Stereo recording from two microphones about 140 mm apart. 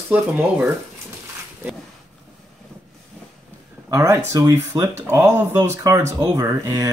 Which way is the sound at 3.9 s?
25° right (ahead or behind).